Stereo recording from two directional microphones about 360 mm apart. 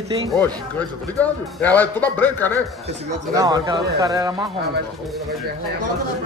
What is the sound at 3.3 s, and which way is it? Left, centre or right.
Speech, centre.